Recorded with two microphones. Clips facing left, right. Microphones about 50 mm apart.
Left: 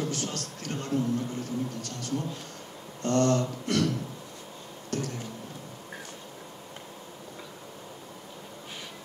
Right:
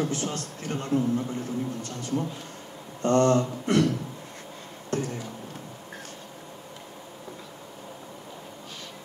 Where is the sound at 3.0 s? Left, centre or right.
Right.